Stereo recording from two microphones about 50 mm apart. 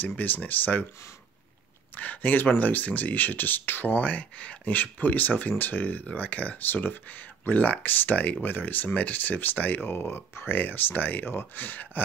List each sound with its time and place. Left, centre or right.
0.5 s speech: left
2.0 s speech: left